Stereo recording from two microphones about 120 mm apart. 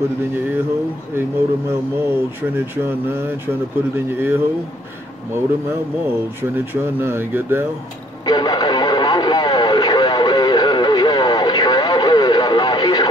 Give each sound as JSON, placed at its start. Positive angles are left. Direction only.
{"t": 1.7, "sound": "speech", "side_deg": -20}
{"t": 8.3, "sound": "radio", "side_deg": 35}